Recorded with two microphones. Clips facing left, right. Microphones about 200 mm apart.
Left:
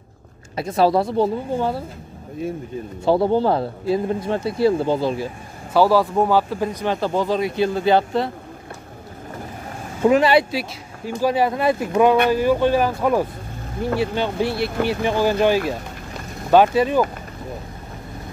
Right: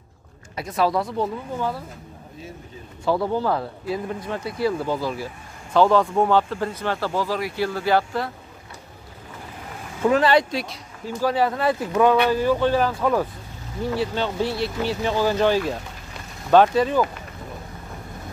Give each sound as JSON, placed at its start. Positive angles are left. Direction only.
{"t": 0.6, "sound": "a man's voice", "side_deg": 30}
{"t": 3.1, "sound": "a man's voice", "side_deg": 30}
{"t": 5.7, "sound": "a man's voice", "side_deg": 10}
{"t": 10.0, "sound": "speech", "side_deg": 15}
{"t": 14.5, "sound": "speech", "side_deg": 60}
{"t": 15.0, "sound": "speech", "side_deg": 15}